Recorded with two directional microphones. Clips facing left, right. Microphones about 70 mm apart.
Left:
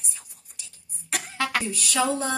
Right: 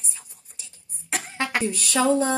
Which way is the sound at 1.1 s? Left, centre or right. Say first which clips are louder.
Even; right.